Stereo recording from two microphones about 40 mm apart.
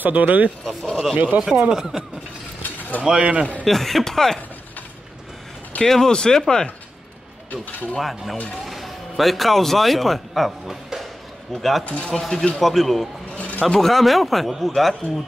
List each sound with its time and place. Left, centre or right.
0.0 s speech: right
0.7 s speech: centre
1.1 s speech: right
1.4 s speech: centre
3.0 s speech: right
3.6 s speech: centre
5.8 s speech: centre
8.0 s a man's voice: centre
11.8 s speech: left
12.1 s speech: centre
13.4 s music: left
13.7 s speech: centre